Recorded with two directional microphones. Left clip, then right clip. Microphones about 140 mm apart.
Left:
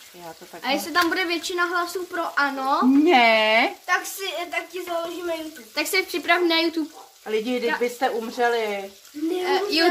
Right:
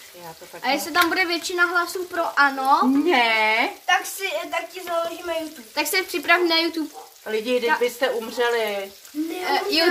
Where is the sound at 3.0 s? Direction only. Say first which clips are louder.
Left 4 dB; 90° left.